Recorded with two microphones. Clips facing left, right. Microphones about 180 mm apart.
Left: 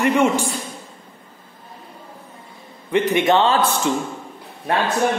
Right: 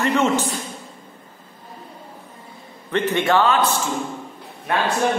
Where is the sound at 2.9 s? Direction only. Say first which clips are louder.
Left 2 dB; 15° left (ahead or behind).